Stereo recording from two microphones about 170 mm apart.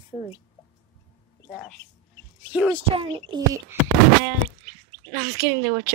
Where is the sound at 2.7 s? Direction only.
30° right (ahead or behind).